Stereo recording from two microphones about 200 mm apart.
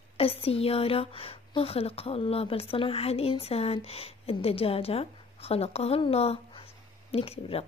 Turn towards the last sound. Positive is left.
turn(degrees=30)  # may be behind; listen again after turning